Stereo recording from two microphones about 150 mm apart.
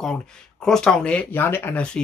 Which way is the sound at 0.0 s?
5° left (ahead or behind).